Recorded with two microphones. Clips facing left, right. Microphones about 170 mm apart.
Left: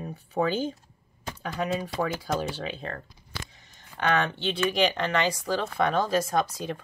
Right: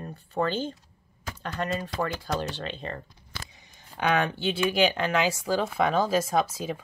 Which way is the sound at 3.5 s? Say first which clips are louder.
Right 1 dB; 15° right (ahead or behind).